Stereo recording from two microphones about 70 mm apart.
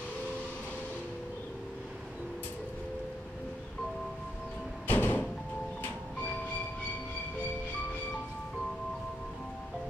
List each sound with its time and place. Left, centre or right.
4.8 s music: left